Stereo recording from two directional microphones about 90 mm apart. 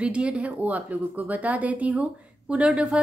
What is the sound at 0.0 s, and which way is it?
Speech, 10° right (ahead or behind).